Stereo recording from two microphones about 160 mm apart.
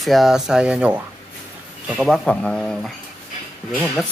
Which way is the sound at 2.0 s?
5° left (ahead or behind).